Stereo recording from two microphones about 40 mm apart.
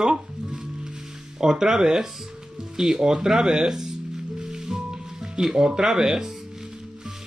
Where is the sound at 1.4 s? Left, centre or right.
Centre.